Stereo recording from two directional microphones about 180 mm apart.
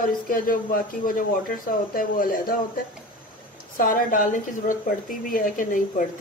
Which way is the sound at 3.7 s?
50° left (ahead or behind).